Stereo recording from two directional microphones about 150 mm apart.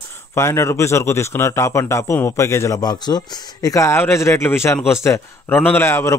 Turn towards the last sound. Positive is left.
turn(degrees=15)  # may be behind; listen again after turning